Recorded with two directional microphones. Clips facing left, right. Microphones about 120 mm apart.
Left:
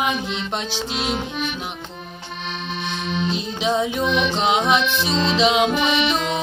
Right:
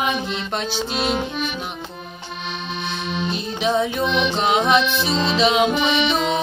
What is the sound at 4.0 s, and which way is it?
Music, 20° right (ahead or behind).